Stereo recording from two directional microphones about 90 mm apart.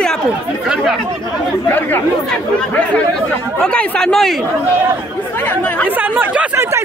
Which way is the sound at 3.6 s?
10° left (ahead or behind).